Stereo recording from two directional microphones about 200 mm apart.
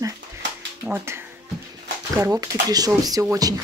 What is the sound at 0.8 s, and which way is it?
Speech, 10° right (ahead or behind).